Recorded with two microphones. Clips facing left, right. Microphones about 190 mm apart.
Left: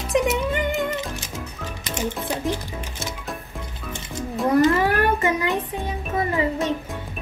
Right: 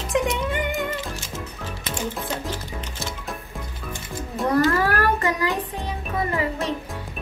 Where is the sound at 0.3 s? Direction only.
10° left (ahead or behind).